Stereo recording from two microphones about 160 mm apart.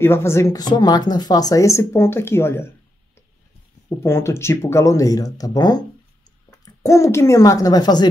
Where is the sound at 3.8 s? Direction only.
15° left (ahead or behind).